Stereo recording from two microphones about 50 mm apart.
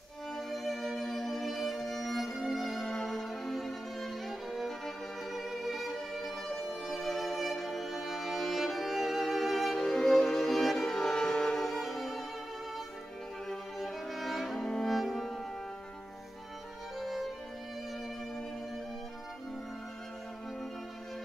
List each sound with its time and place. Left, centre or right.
0.3 s music: centre
2.9 s violin: centre
11.0 s music: centre
11.6 s music: centre
13.5 s music: centre
17.0 s music: centre